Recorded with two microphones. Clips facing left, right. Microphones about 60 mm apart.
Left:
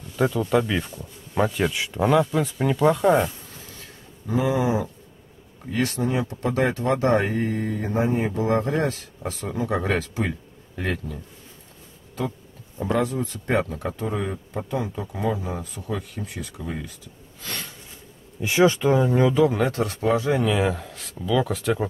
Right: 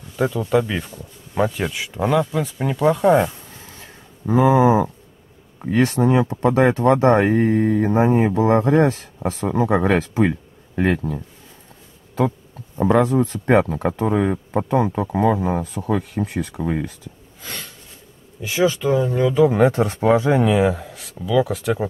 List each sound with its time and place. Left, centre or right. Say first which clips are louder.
0.1 s speech: right 2 dB; centre
4.5 s speech: right 9 dB; right
6.9 s speech: right 6 dB; right
7.2 s speech: right 7 dB; right
9.5 s speech: right 7 dB; right
12.9 s speech: right 6 dB; right
17.4 s a sound: even; centre
18.4 s speech: left 1 dB; centre
19.3 s speech: right 5 dB; centre
20.5 s speech: right 5 dB; centre